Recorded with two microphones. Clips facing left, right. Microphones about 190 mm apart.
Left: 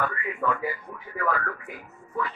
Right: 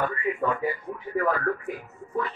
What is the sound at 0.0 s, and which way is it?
Speech, 30° right (ahead or behind).